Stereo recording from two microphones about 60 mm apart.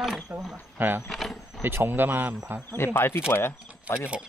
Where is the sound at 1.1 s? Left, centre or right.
Centre.